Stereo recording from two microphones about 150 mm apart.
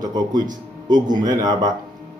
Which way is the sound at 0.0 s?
30° right (ahead or behind).